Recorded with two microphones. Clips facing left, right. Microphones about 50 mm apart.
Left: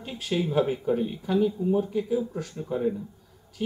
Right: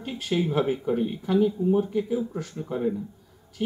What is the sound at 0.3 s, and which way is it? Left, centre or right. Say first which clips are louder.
Speech: even; centre.